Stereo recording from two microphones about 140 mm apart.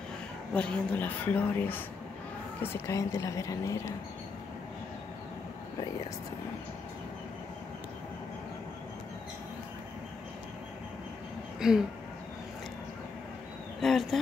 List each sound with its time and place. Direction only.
0.6 s a woman's voice: 10° left (ahead or behind)
11.6 s speech: 5° right (ahead or behind)
13.7 s speech: centre (ahead or behind)